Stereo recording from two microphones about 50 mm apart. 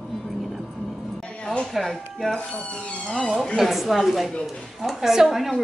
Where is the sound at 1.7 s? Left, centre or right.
Centre.